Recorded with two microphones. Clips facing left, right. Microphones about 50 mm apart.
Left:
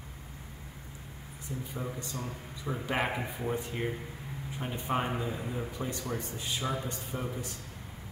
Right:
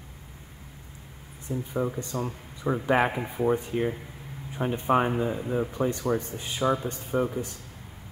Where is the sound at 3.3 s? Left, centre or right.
Right.